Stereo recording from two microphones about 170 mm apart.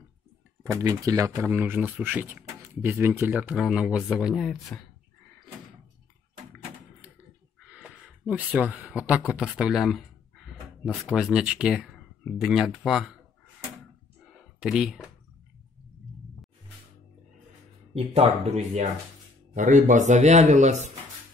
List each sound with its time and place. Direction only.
0.7 s speech: 20° right (ahead or behind); by 4.8 s centre (ahead or behind)
7.6 s speech: 5° right (ahead or behind)
14.6 s speech: 5° right (ahead or behind)
17.9 s speech: 35° right (ahead or behind)